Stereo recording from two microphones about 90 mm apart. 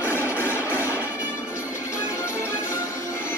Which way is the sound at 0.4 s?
25° left (ahead or behind).